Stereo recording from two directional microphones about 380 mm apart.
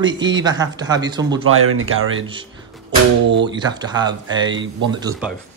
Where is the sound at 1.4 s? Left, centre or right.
Right.